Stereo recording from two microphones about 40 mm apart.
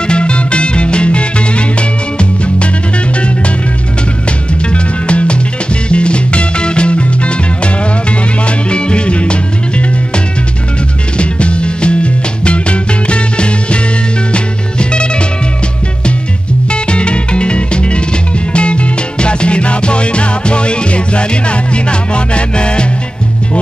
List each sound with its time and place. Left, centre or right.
0.0 s music: left
5.0 s music: left
11.1 s music: left
16.7 s music: left